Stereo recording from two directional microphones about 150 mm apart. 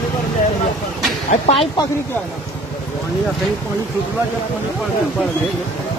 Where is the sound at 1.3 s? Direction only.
40° left (ahead or behind).